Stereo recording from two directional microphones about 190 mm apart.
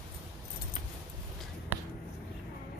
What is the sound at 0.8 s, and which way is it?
Keys jangling, 35° left (ahead or behind).